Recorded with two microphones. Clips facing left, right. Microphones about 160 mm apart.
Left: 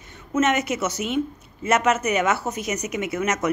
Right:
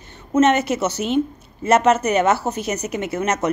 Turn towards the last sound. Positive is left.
turn(degrees=-30)  # may be behind; listen again after turning